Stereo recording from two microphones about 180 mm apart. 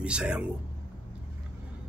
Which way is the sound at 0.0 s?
5° right (ahead or behind).